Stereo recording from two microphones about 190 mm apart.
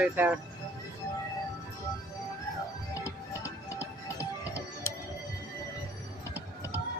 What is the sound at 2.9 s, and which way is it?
Music, 15° left (ahead or behind).